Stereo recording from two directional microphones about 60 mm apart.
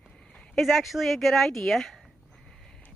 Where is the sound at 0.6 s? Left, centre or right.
Centre.